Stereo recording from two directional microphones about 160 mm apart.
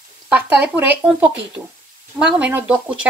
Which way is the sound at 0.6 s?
10° right (ahead or behind).